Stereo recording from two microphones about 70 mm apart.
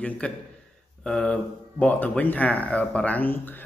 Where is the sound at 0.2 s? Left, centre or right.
Centre.